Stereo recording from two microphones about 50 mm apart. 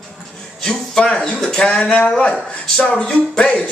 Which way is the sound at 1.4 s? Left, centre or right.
Centre.